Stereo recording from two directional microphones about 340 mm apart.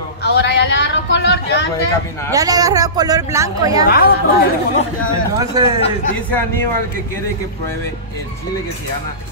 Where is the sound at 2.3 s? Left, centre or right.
Centre.